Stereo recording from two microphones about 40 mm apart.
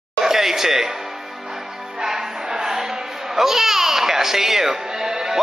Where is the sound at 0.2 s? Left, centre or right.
Centre.